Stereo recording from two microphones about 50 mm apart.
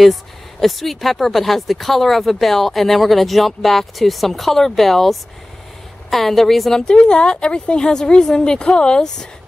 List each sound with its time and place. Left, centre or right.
0.0 s speech: centre
6.8 s a woman's voice: centre